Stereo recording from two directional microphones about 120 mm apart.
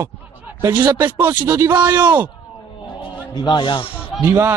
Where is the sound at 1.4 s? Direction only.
30° right (ahead or behind).